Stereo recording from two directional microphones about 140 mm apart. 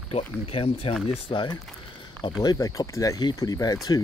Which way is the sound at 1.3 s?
35° left (ahead or behind).